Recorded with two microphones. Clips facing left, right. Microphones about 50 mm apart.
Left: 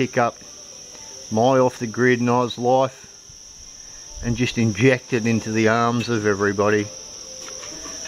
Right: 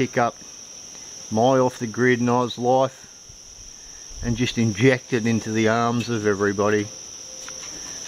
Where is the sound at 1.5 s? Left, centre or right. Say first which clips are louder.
Left 2 dB; left.